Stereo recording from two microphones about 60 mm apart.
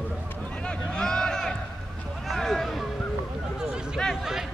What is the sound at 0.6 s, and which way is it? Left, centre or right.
Speech, centre.